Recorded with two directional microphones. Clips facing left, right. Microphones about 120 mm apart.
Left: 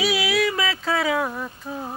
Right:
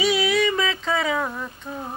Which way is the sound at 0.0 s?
Centre (ahead or behind).